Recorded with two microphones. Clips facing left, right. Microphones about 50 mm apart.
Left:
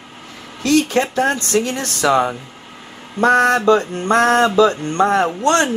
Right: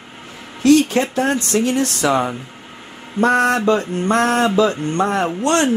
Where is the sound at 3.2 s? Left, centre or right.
Left.